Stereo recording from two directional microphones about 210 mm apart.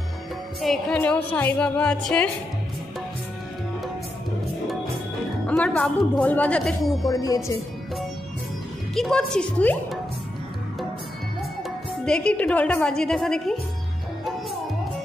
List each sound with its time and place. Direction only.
0.6 s a woman's voice: centre (ahead or behind)
5.5 s a woman's voice: 5° left (ahead or behind)
7.1 s a woman's voice: 15° left (ahead or behind)
8.9 s a woman's voice: centre (ahead or behind)
12.0 s a woman's voice: 5° left (ahead or behind)